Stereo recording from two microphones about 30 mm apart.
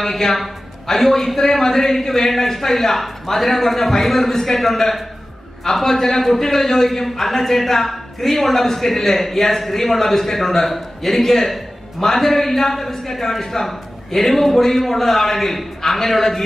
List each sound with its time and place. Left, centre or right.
0.0 s a man's voice: centre